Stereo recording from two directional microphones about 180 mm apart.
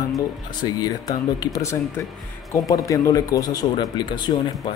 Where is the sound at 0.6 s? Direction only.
20° left (ahead or behind).